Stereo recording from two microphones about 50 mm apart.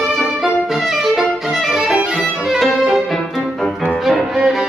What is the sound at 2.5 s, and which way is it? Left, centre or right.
Music, centre.